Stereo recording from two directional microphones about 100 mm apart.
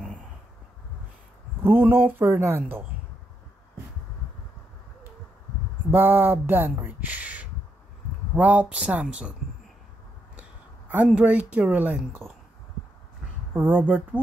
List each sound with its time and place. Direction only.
1.6 s speech: 20° right (ahead or behind)
5.9 s speech: 20° right (ahead or behind)
11.1 s speech: 10° right (ahead or behind)
13.6 s speech: 20° right (ahead or behind)